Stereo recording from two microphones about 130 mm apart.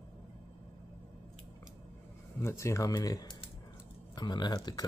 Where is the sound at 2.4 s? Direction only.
20° left (ahead or behind).